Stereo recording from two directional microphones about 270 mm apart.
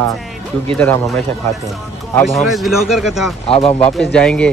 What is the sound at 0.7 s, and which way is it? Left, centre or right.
Speech, centre.